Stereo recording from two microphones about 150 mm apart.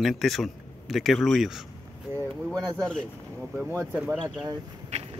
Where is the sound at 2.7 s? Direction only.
5° left (ahead or behind).